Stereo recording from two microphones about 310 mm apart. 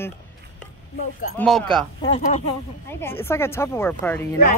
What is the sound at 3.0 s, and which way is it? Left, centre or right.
Speech, centre.